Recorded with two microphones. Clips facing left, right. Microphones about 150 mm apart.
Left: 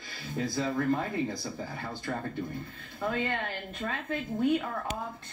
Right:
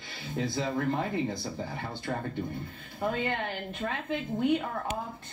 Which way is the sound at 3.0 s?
15° right (ahead or behind).